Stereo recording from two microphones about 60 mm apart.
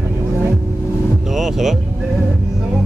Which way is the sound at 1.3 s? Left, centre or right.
Centre.